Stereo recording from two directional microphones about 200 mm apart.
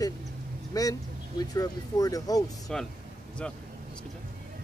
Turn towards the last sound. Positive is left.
turn(degrees=5)  # may be behind; listen again after turning